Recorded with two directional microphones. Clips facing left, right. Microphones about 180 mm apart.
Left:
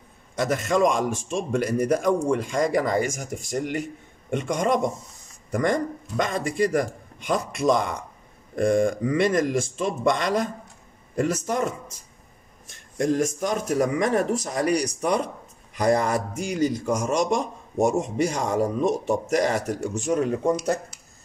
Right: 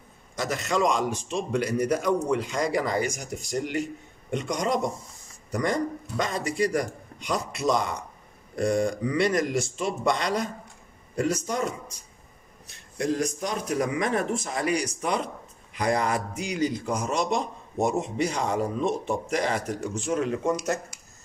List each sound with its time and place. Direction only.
0.4 s a man's voice: 50° left (ahead or behind)
12.6 s a man's voice: 45° left (ahead or behind); by 20.8 s 30° left (ahead or behind)